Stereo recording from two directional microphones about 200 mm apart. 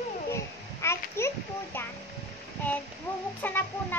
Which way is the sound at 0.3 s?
15° left (ahead or behind).